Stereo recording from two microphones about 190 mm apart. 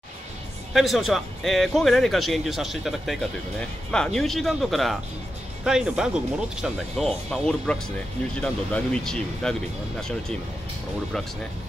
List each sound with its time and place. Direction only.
0.7 s speech: centre (ahead or behind)